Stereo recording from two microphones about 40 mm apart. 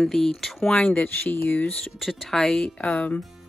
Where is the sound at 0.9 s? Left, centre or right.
Left.